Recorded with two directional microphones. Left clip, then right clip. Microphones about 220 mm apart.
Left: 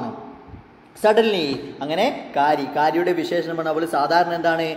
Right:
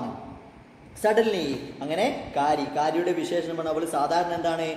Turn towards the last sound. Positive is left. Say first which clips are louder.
# left 6 dB
turn(degrees=15)  # may be behind; listen again after turning